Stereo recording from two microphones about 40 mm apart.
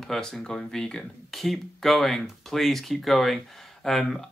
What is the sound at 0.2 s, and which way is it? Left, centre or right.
Speech, centre.